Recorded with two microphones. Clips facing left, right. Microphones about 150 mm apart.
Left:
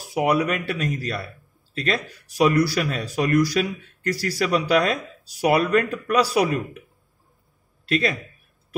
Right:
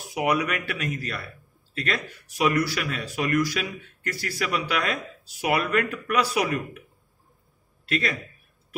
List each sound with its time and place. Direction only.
0.1 s speech: 30° left (ahead or behind)